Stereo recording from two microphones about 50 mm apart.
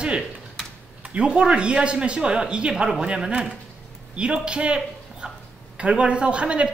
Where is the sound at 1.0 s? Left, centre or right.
Centre.